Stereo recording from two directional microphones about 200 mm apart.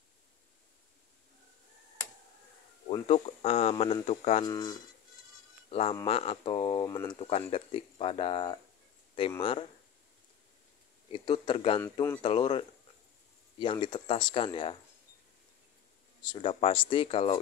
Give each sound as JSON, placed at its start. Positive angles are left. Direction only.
{"t": 2.9, "sound": "speech", "side_deg": 30}
{"t": 4.5, "sound": "speech", "side_deg": 20}
{"t": 5.7, "sound": "speech", "side_deg": 30}
{"t": 11.1, "sound": "speech", "side_deg": 25}
{"t": 11.8, "sound": "speech", "side_deg": 10}
{"t": 12.2, "sound": "speech", "side_deg": 25}
{"t": 16.2, "sound": "speech", "side_deg": 25}